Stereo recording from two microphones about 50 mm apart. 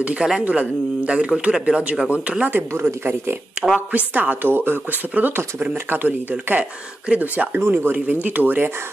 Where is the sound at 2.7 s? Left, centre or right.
Right.